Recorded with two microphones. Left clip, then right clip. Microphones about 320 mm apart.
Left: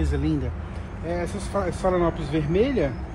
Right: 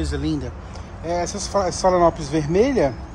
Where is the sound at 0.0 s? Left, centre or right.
Centre.